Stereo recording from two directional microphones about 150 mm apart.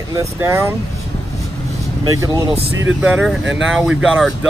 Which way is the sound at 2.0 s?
20° right (ahead or behind).